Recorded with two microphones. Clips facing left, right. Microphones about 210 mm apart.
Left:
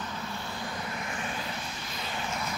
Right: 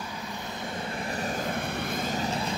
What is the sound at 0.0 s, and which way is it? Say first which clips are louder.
Vehicle: right 1 dB; 15° right (ahead or behind).